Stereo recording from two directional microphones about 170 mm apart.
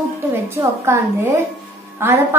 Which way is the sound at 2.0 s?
15° right (ahead or behind).